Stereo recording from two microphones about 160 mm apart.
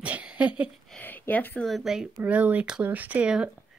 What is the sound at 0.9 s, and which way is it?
Speech, 10° left (ahead or behind).